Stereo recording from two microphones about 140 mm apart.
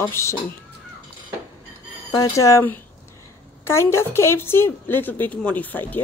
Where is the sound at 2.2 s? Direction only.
20° left (ahead or behind).